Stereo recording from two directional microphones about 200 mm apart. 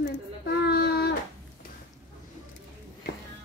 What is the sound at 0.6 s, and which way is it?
Child singing, 50° left (ahead or behind).